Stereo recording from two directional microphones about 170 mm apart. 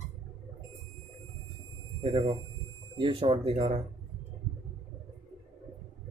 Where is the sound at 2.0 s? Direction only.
30° right (ahead or behind).